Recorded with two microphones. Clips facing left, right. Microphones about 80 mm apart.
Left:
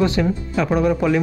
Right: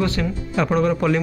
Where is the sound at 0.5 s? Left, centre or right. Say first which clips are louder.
Even; centre.